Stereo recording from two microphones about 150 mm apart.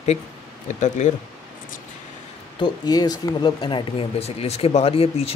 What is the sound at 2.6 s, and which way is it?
Speech, 25° left (ahead or behind).